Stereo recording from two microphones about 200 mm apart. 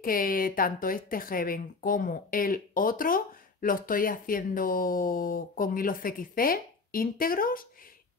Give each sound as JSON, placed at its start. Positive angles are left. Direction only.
{"t": 0.0, "sound": "speech", "side_deg": 45}